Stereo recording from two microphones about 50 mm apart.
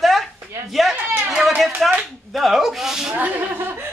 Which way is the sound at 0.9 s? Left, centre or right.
Right.